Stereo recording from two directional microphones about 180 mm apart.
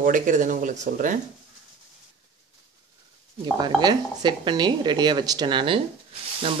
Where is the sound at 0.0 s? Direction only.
45° right (ahead or behind).